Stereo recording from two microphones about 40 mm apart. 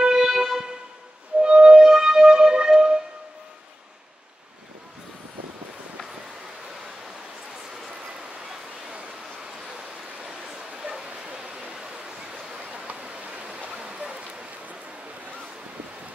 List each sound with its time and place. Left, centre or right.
0.0 s music: centre
1.4 s music: right
10.8 s bow-wow: centre
11.3 s waterfall: centre
13.3 s stream: right